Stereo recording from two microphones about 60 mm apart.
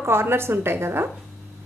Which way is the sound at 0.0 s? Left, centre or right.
Right.